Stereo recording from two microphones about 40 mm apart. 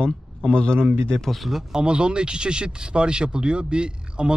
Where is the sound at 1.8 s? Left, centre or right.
Right.